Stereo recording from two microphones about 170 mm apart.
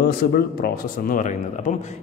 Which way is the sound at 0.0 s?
65° left (ahead or behind).